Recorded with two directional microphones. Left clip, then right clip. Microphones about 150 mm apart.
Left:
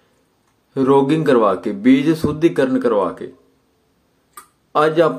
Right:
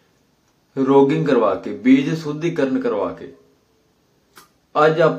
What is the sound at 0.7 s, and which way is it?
Speech, 30° left (ahead or behind).